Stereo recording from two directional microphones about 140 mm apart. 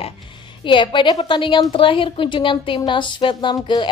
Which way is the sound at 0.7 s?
35° left (ahead or behind).